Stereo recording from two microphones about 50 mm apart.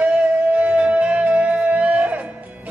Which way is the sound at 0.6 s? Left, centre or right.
Right.